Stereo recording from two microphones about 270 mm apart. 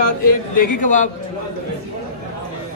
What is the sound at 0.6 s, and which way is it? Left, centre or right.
Speech, left.